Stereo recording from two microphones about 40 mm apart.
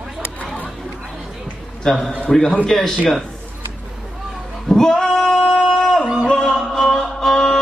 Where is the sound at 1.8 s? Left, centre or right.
Centre.